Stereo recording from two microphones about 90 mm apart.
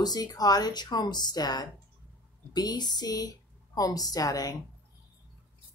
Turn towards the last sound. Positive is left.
turn(degrees=45)  # may be behind; listen again after turning